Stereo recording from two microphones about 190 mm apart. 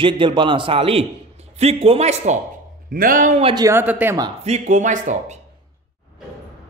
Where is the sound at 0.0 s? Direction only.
25° right (ahead or behind).